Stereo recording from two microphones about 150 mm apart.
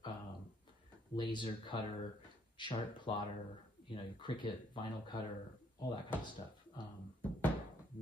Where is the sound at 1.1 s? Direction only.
30° left (ahead or behind).